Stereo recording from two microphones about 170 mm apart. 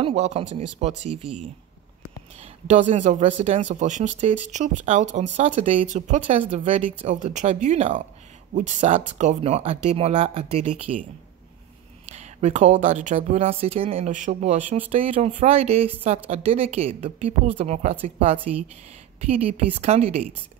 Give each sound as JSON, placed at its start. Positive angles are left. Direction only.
{"t": 0.0, "sound": "speech", "side_deg": -40}
{"t": 2.7, "sound": "speech", "side_deg": -40}
{"t": 12.2, "sound": "speech", "side_deg": -40}